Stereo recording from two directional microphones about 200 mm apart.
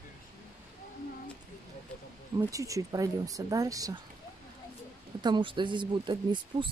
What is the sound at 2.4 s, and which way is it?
Speech, 15° right (ahead or behind).